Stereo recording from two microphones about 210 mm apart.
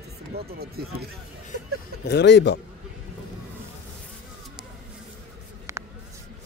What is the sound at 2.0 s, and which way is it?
Speech, 55° left (ahead or behind).